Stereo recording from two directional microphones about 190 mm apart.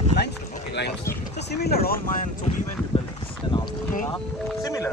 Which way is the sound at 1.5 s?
55° left (ahead or behind).